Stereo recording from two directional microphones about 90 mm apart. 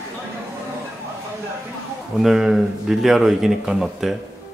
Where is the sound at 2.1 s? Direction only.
5° right (ahead or behind).